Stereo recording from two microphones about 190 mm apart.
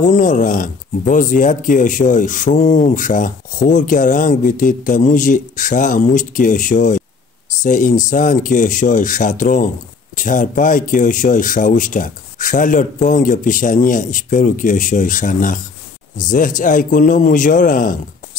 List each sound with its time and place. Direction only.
0.0 s speech: 40° left (ahead or behind)